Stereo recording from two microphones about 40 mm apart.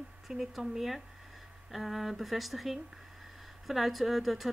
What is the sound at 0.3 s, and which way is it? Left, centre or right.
Speech, centre.